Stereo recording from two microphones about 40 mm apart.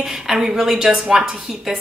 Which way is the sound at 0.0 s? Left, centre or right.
Centre.